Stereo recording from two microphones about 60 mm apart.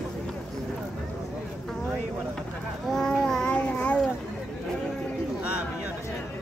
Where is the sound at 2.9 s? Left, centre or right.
Centre.